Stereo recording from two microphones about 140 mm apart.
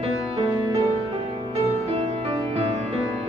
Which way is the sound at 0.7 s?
35° right (ahead or behind).